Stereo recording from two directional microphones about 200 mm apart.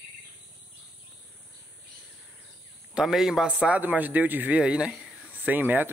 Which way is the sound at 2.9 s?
Centre (ahead or behind).